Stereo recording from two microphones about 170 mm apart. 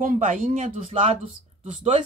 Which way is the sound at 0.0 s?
50° right (ahead or behind).